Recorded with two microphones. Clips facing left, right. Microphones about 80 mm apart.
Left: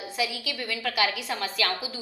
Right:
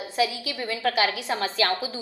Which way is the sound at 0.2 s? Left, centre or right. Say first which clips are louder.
Right 5 dB; right.